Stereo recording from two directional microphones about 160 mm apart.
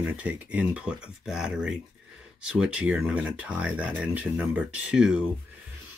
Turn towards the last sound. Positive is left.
turn(degrees=-5)  # may be behind; listen again after turning